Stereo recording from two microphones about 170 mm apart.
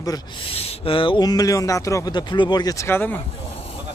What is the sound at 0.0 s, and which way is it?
Speech, 20° left (ahead or behind).